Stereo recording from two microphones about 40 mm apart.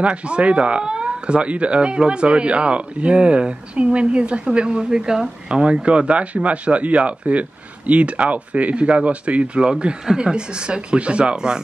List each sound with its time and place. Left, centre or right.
0.0 s speech: right